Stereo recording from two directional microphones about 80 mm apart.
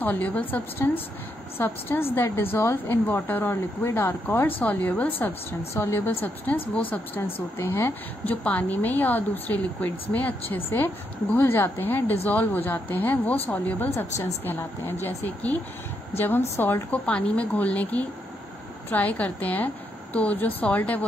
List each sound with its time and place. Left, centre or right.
0.0 s a woman's voice: centre
0.8 s a woman's voice: left